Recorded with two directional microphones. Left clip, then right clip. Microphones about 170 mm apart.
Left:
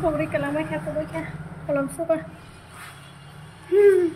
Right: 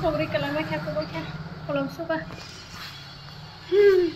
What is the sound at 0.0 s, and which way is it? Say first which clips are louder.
Speech: left 1 dB; 15° left (ahead or behind).